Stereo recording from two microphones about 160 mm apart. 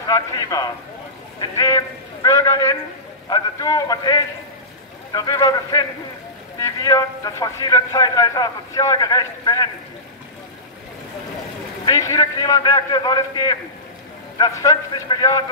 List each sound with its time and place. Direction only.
0.0 s a man's voice: 25° left (ahead or behind)
11.8 s a man's voice: 20° left (ahead or behind)